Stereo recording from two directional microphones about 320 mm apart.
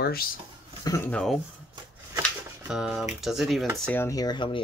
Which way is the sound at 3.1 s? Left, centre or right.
Centre.